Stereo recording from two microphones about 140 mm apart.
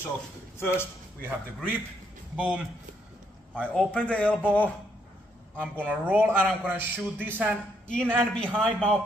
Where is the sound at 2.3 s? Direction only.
10° right (ahead or behind).